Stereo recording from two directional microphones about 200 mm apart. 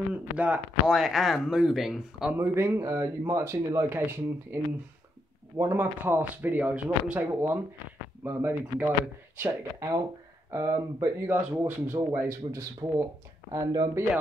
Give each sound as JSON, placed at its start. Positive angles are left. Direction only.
{"t": 0.1, "sound": "speech", "side_deg": -5}
{"t": 5.6, "sound": "speech", "side_deg": -10}